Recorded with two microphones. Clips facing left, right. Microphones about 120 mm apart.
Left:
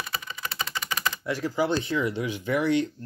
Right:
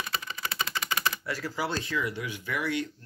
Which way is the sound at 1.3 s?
20° left (ahead or behind).